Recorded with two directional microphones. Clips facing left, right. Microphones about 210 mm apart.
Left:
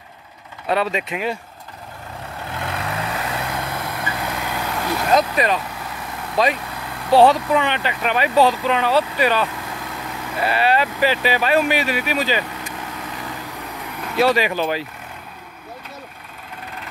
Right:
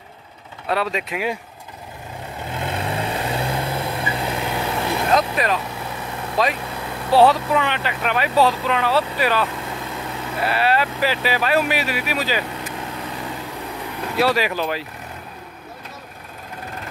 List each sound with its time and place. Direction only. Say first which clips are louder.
0.7 s speech: left 2 dB; centre (ahead or behind)
2.5 s vehicle: right 2 dB; 25° right (ahead or behind)
5.1 s speech: left 3 dB; centre (ahead or behind)
14.1 s speech: left 2 dB; centre (ahead or behind)